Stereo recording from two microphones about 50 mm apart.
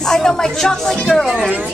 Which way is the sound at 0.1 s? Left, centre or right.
Centre.